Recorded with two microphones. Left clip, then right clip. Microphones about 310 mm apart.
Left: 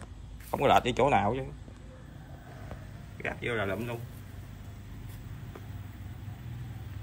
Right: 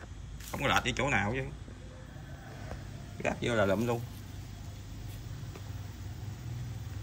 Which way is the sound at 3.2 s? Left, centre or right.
Centre.